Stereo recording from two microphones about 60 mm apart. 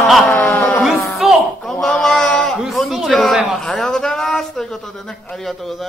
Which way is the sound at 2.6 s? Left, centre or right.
Centre.